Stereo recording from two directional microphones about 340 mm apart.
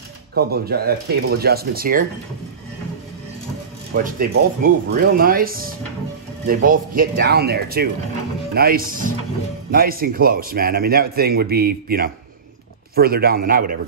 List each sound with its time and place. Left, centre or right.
0.3 s speech: right
3.9 s speech: right